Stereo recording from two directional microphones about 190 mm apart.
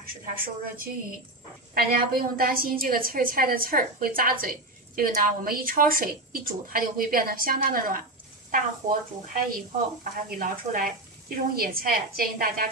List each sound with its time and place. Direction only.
0.0 s a woman's voice: 50° right (ahead or behind)
10.4 s a woman's voice: 50° right (ahead or behind)